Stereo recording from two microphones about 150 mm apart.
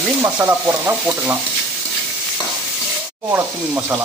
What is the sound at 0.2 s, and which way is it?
Stir, 15° right (ahead or behind).